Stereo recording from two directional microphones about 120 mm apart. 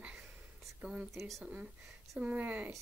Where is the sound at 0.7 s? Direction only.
10° right (ahead or behind).